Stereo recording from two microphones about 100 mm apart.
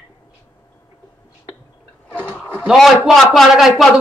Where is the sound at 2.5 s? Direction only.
10° right (ahead or behind).